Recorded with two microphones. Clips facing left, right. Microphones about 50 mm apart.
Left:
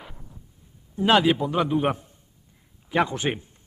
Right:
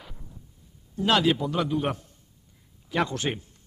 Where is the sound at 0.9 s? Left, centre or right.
Left.